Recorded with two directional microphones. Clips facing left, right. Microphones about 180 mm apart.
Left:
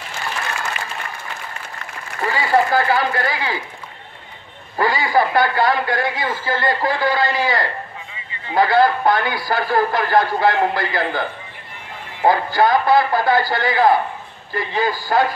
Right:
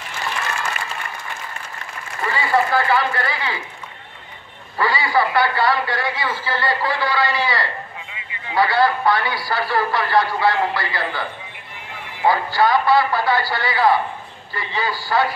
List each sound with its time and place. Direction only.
2.3 s speech: 40° left (ahead or behind)
4.7 s a man's voice: 45° left (ahead or behind)